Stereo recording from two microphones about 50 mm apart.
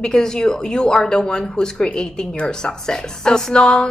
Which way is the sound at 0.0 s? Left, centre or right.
Centre.